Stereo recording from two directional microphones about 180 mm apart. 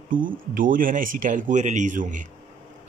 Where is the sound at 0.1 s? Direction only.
50° right (ahead or behind).